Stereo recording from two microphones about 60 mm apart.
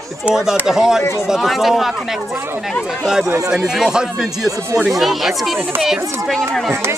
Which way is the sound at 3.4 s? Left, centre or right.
Centre.